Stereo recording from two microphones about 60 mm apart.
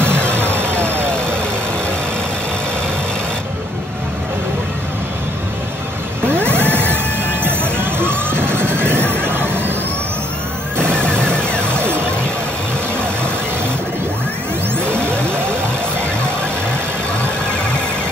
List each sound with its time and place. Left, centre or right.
0.0 s music: right
0.7 s vehicle: centre
6.5 s music: right
10.8 s music: centre